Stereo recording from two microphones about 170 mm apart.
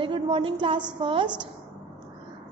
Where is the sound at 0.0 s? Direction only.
30° right (ahead or behind).